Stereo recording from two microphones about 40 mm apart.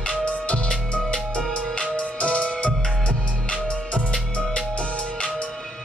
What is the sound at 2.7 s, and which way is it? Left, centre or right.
Music, centre.